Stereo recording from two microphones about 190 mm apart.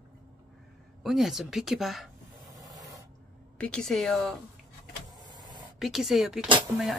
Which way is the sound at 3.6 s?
5° left (ahead or behind).